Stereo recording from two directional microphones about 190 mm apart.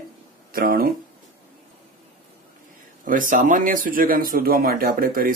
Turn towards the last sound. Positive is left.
turn(degrees=-50)  # may be behind; listen again after turning